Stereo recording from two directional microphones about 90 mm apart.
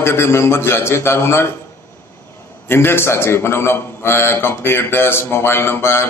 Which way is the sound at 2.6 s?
25° left (ahead or behind).